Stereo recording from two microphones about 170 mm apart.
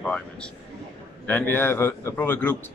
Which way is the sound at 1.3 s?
10° left (ahead or behind).